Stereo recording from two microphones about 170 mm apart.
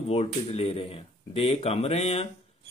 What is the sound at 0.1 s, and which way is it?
Speech, 35° left (ahead or behind).